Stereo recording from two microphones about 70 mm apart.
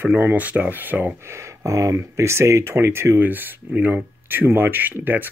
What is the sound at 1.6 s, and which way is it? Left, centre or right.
Speech, right.